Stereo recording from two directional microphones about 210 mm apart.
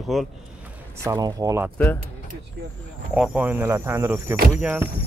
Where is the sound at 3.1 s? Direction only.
5° right (ahead or behind).